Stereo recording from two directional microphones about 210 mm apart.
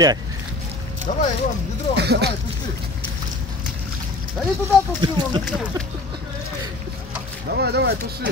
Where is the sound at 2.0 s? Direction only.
50° right (ahead or behind).